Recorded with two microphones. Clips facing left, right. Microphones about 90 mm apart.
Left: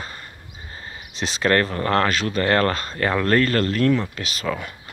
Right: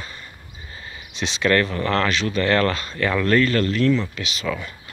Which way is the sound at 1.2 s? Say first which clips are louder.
Even; 40° left (ahead or behind).